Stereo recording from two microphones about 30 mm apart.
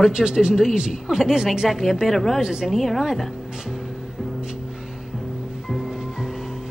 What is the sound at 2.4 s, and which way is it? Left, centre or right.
Speech, right.